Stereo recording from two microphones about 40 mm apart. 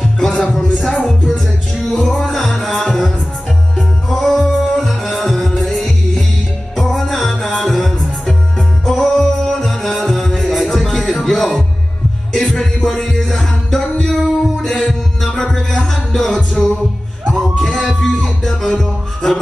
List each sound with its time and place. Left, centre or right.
0.0 s music: centre
0.7 s music: centre
1.0 s music: centre
4.1 s music: centre
12.5 s music: centre
16.6 s music: centre
17.6 s music: centre